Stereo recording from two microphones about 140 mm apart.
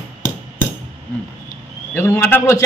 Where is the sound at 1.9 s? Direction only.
15° left (ahead or behind).